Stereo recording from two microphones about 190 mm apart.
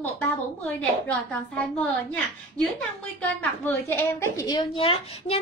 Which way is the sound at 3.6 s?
10° left (ahead or behind).